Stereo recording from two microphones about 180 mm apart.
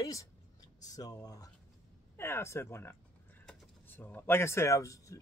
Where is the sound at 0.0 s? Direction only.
20° left (ahead or behind).